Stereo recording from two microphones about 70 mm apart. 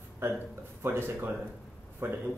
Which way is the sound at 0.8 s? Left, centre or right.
Right.